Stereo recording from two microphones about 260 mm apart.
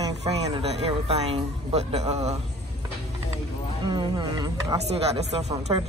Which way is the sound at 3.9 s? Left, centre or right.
Centre.